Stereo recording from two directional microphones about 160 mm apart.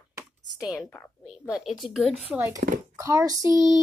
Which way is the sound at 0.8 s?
10° left (ahead or behind).